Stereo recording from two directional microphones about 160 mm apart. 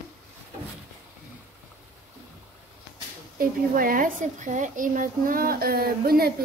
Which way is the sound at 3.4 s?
60° right (ahead or behind).